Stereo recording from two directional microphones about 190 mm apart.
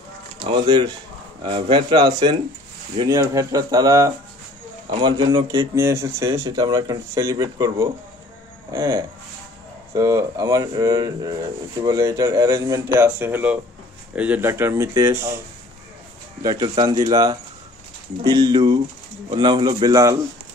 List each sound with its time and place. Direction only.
0.4 s speech: 25° right (ahead or behind)
16.4 s speech: 20° right (ahead or behind)